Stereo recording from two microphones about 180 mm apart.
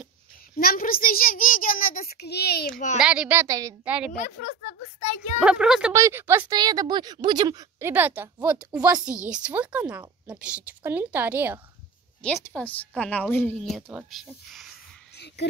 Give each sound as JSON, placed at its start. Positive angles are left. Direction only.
{"t": 0.6, "sound": "a child's voice", "side_deg": 55}
{"t": 3.0, "sound": "a woman's voice", "side_deg": -5}
{"t": 4.1, "sound": "a child's voice", "side_deg": 45}
{"t": 5.4, "sound": "speech", "side_deg": -5}
{"t": 5.9, "sound": "a woman's voice", "side_deg": -15}
{"t": 12.4, "sound": "speech", "side_deg": 10}
{"t": 13.6, "sound": "speech", "side_deg": 0}
{"t": 15.1, "sound": "a sound", "side_deg": 70}